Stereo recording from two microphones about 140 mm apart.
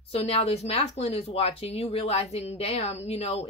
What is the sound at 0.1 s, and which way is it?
Speech, 45° left (ahead or behind).